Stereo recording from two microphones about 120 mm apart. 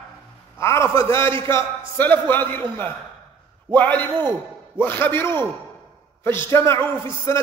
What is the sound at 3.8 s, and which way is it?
A man's voice, 15° left (ahead or behind).